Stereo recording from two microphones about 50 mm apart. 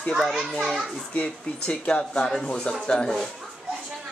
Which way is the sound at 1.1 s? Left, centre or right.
Left.